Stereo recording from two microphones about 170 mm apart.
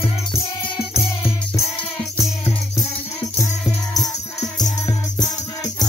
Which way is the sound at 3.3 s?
20° left (ahead or behind).